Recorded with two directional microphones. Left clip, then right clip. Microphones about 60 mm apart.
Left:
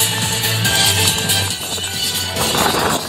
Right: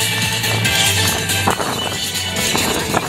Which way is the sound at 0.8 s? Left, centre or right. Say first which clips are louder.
Left 2 dB; right.